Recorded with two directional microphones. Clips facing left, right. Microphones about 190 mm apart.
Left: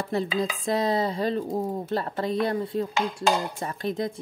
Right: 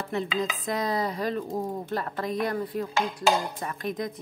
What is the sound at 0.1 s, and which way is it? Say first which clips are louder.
Speech: left 2 dB; 35° left (ahead or behind).